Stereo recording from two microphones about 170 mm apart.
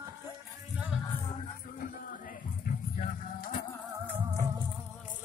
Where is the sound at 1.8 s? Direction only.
55° left (ahead or behind).